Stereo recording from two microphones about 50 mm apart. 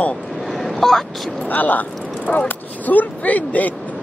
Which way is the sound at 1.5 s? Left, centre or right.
Left.